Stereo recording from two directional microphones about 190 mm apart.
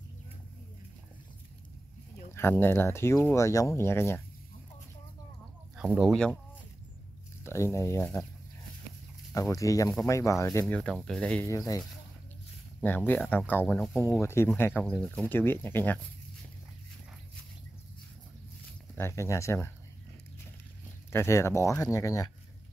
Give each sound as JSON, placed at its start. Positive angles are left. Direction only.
{"t": 2.3, "sound": "speech", "side_deg": 10}
{"t": 5.8, "sound": "speech", "side_deg": -5}
{"t": 7.4, "sound": "speech", "side_deg": 15}
{"t": 9.3, "sound": "speech", "side_deg": 15}
{"t": 11.4, "sound": "speech", "side_deg": 15}
{"t": 12.8, "sound": "speech", "side_deg": 10}
{"t": 18.9, "sound": "speech", "side_deg": 15}
{"t": 21.1, "sound": "speech", "side_deg": 15}